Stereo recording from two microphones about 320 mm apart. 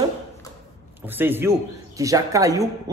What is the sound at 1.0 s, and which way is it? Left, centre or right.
A man's voice, centre.